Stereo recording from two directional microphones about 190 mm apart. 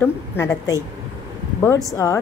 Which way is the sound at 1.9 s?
15° left (ahead or behind).